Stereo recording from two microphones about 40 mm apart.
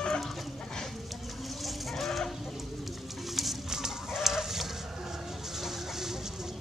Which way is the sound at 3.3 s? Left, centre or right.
Centre.